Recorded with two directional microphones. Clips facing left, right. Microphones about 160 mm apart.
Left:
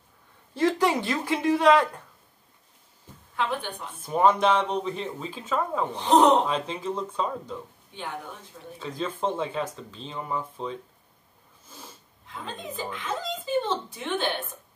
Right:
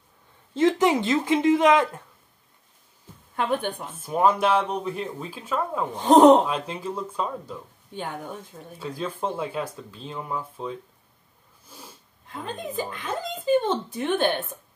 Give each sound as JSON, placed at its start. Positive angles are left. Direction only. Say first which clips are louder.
{"t": 0.6, "sound": "speech", "louder": "right 3 dB", "side_deg": -20}
{"t": 3.3, "sound": "speech", "louder": "right 4 dB", "side_deg": -50}
{"t": 4.0, "sound": "speech", "louder": "even", "side_deg": -5}
{"t": 5.9, "sound": "speech", "louder": "right 6 dB", "side_deg": -45}
{"t": 6.4, "sound": "speech", "louder": "even", "side_deg": -5}
{"t": 8.7, "sound": "speech", "louder": "right 1 dB", "side_deg": -10}
{"t": 13.0, "sound": "speech", "louder": "right 2 dB", "side_deg": -50}